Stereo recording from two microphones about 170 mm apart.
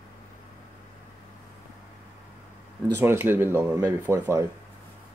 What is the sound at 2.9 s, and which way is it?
Speech, 15° right (ahead or behind).